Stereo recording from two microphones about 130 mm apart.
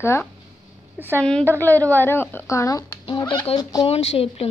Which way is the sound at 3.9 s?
55° left (ahead or behind).